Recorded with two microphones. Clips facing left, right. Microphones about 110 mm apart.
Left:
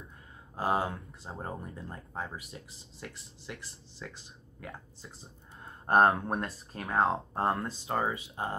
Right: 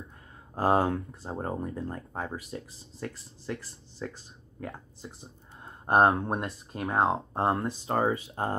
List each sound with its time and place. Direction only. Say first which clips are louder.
0.6 s speech: right 6 dB; 40° right (ahead or behind)
6.0 s speech: right 2 dB; 25° right (ahead or behind)